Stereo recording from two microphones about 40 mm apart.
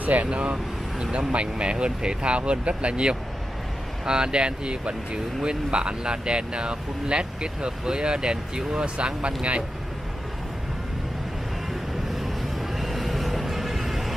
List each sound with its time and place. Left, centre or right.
0.0 s speech: right
12.2 s vehicle: centre